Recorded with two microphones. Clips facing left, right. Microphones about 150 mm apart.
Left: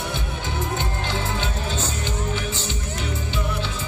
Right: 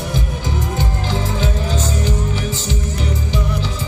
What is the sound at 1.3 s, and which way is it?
Music, 40° right (ahead or behind).